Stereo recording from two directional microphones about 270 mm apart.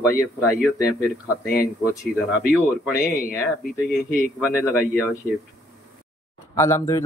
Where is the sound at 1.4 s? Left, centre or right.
Left.